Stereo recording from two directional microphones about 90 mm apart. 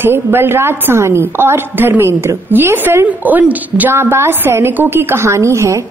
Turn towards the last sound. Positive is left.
turn(degrees=-35)  # may be behind; listen again after turning